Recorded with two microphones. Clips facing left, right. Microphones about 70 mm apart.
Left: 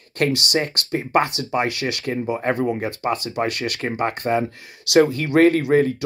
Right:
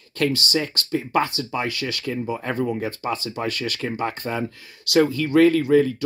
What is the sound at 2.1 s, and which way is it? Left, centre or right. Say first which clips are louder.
Speech: left 4 dB; left.